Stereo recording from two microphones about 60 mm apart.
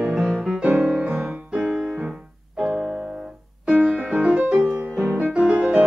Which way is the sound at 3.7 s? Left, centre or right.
Centre.